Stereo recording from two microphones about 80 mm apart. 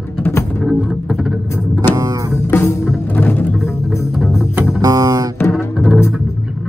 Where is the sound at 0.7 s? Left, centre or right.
Centre.